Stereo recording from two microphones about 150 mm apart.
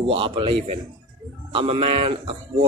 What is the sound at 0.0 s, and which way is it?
Speech, 35° right (ahead or behind).